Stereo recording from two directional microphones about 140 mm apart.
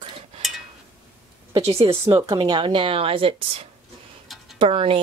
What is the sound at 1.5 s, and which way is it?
Speech, 45° right (ahead or behind).